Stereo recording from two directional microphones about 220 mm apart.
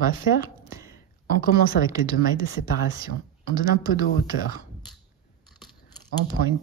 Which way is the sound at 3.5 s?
15° right (ahead or behind).